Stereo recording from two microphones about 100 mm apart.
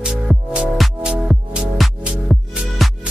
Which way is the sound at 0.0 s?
5° right (ahead or behind).